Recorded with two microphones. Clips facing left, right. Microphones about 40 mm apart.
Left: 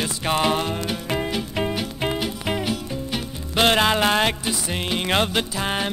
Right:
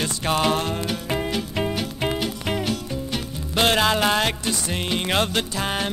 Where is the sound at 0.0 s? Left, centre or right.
Centre.